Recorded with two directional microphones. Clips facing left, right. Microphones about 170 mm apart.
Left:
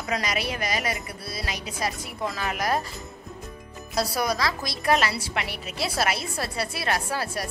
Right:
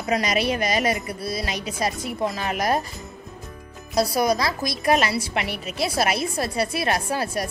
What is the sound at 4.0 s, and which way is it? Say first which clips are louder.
A woman's voice: right 5 dB; 15° right (ahead or behind).